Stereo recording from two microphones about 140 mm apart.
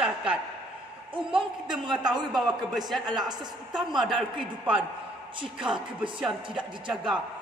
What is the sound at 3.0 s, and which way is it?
Speech, 30° right (ahead or behind).